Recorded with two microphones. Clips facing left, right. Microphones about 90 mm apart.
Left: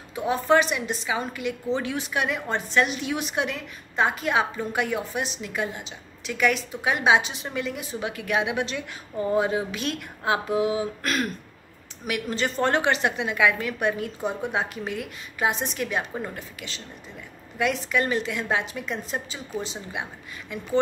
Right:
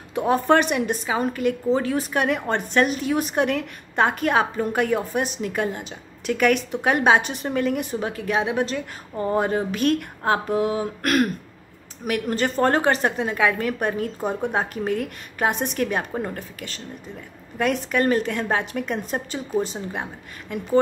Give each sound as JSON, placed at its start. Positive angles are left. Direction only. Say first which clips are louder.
{"t": 0.1, "sound": "a woman's voice", "louder": "right 3 dB", "side_deg": -50}
{"t": 8.0, "sound": "a woman's voice", "louder": "right 2 dB", "side_deg": -35}
{"t": 9.3, "sound": "a woman's voice", "louder": "right 2 dB", "side_deg": -50}